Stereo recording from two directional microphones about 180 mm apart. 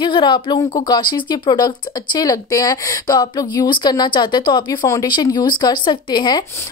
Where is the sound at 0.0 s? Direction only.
25° left (ahead or behind).